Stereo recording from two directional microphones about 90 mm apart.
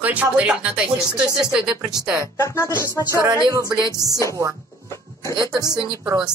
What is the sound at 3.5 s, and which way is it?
Music, 45° right (ahead or behind).